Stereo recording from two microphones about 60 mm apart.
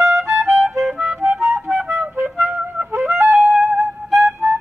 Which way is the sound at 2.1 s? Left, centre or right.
Right.